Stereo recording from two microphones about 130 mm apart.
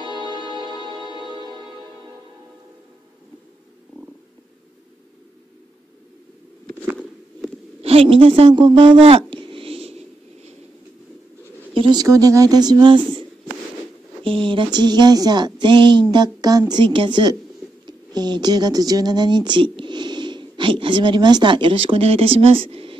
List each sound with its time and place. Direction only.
0.0 s music: 35° right (ahead or behind)
7.8 s a woman's voice: 50° right (ahead or behind)
11.7 s bird: 45° right (ahead or behind)
12.0 s speech: 25° right (ahead or behind)
14.2 s speech: 40° right (ahead or behind)